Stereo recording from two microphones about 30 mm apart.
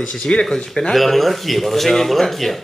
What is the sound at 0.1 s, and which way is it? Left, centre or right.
Speech, left.